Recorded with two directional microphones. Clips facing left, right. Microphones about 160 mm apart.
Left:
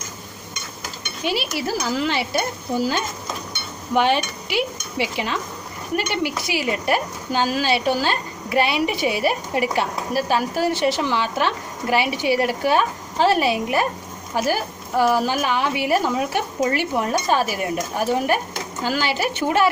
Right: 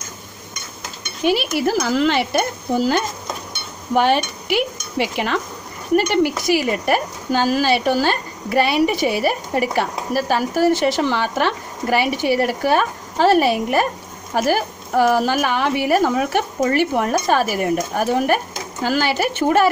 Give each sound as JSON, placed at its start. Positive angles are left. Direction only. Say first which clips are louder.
{"t": 1.2, "sound": "a woman's voice", "louder": "right 6 dB", "side_deg": -50}
{"t": 1.8, "sound": "speech", "louder": "right 4 dB", "side_deg": -65}
{"t": 3.9, "sound": "a woman's voice", "louder": "right 2 dB", "side_deg": -45}
{"t": 5.9, "sound": "a woman's voice", "louder": "right 7 dB", "side_deg": -45}